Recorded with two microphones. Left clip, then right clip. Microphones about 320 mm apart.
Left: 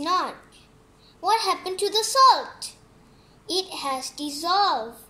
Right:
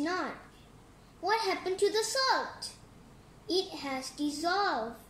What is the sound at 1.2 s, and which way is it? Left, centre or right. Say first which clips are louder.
A woman's voice: left 7 dB; centre.